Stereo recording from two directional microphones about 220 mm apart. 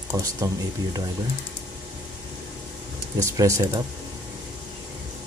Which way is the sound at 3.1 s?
15° right (ahead or behind).